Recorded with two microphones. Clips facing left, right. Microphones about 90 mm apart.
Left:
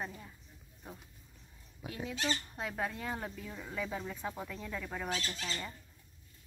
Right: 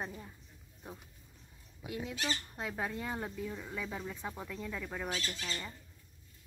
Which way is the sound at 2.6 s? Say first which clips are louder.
Even; 5° right (ahead or behind).